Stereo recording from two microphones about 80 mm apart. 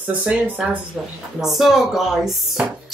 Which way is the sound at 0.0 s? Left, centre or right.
Centre.